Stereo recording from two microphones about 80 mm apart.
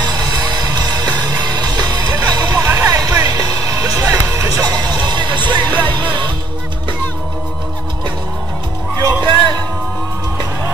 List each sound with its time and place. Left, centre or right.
0.0 s music: right
0.9 s music: centre
1.2 s music: right
2.5 s music: right
2.9 s music: right
4.7 s music: right
5.6 s music: centre
9.0 s music: right